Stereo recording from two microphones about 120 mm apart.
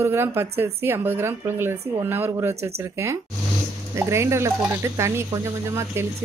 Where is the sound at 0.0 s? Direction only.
20° right (ahead or behind).